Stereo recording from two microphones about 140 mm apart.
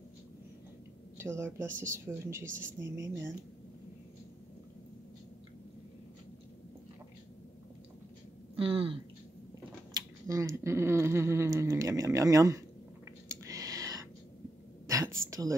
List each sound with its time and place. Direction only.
1.1 s speech: 20° right (ahead or behind)
8.5 s speech: 40° right (ahead or behind)
9.9 s speech: 25° right (ahead or behind)
13.5 s whispering: 25° right (ahead or behind)
14.9 s a sound: 20° right (ahead or behind)